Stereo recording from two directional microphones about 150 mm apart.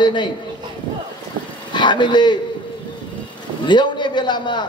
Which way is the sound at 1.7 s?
30° left (ahead or behind).